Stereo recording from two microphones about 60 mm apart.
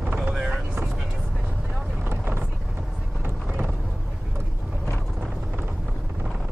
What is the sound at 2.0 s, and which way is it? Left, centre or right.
Vehicle, right.